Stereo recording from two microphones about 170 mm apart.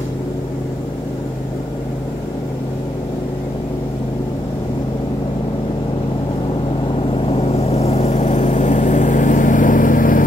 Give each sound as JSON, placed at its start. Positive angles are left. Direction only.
{"t": 7.2, "sound": "vehicle", "side_deg": 35}